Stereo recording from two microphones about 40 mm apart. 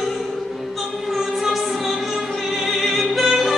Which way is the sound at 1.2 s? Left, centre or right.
Centre.